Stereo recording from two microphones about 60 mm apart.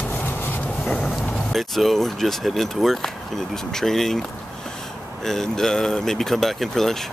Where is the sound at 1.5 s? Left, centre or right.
Centre.